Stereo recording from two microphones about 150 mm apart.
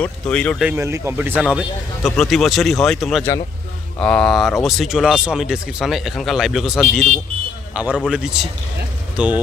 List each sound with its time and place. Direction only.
0.0 s speech: 5° left (ahead or behind)
0.7 s a man's voice: 20° right (ahead or behind)